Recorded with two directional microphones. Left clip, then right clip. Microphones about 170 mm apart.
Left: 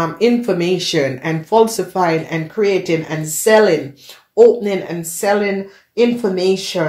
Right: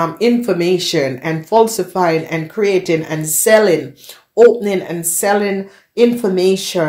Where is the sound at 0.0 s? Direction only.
35° right (ahead or behind).